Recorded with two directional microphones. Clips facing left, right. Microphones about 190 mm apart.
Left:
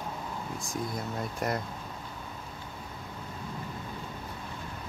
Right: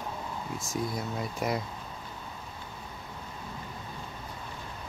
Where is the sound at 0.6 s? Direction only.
Centre (ahead or behind).